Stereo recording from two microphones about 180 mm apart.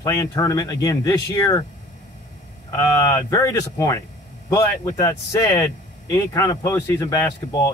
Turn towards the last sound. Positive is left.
turn(degrees=20)  # may be behind; listen again after turning